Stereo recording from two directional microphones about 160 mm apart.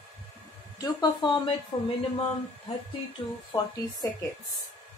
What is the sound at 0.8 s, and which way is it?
Speech, 25° left (ahead or behind).